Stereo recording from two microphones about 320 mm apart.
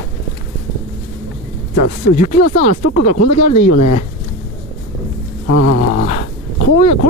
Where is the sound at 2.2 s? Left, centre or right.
Left.